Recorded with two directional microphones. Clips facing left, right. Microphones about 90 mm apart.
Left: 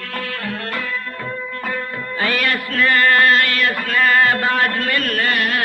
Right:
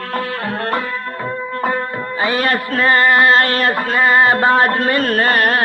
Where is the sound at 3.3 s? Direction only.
35° right (ahead or behind).